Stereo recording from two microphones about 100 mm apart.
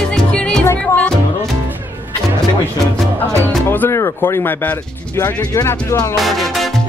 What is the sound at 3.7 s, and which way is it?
Music, 25° left (ahead or behind).